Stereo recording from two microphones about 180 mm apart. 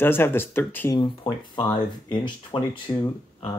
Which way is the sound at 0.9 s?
25° left (ahead or behind).